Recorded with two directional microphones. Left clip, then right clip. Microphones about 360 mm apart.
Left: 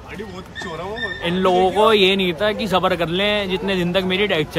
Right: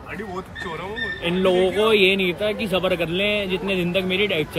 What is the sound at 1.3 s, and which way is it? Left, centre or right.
Speech, centre.